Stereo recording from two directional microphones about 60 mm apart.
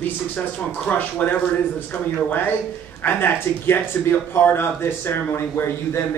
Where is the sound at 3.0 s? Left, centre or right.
Left.